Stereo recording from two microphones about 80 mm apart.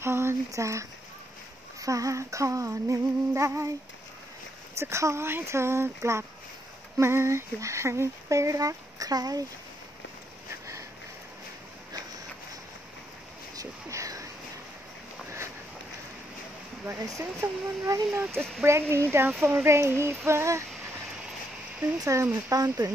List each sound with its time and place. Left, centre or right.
0.0 s speech: right
4.7 s speech: right
13.6 s a sound: right
17.1 s speech: right
22.0 s speech: right